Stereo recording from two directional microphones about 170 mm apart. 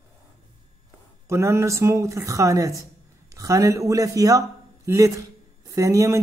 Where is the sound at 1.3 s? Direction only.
15° right (ahead or behind).